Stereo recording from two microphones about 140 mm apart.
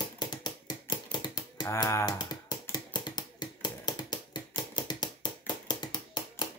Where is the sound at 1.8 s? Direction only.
30° left (ahead or behind).